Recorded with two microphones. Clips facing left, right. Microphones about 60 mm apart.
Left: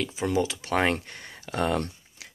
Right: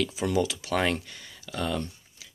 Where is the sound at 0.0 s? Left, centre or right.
Left.